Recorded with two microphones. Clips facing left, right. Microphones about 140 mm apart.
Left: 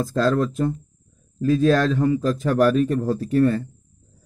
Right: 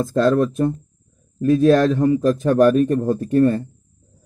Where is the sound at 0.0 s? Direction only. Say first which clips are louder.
Right 4 dB; 25° right (ahead or behind).